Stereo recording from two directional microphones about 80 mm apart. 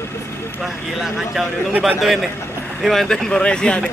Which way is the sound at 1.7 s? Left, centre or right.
Centre.